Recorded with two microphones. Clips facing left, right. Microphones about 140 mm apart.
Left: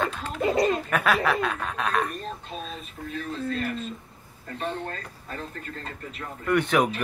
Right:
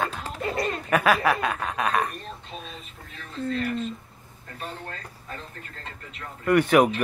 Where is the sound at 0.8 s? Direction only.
5° right (ahead or behind).